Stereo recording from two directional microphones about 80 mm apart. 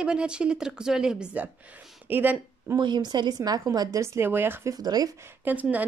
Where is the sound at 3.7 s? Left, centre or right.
Right.